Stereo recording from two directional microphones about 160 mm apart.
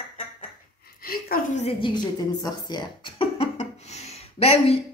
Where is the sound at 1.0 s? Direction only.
65° left (ahead or behind).